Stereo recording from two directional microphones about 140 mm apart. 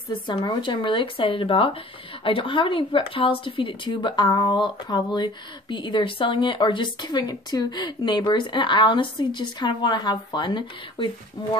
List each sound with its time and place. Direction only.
0.1 s speech: 35° left (ahead or behind)